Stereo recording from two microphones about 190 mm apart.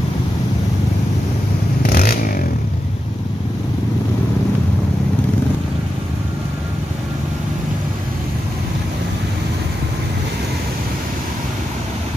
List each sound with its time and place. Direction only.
1.9 s vehicle: 50° left (ahead or behind)